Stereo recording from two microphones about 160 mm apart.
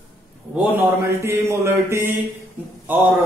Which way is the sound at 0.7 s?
15° right (ahead or behind).